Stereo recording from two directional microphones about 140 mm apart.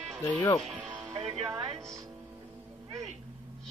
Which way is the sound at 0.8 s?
20° right (ahead or behind).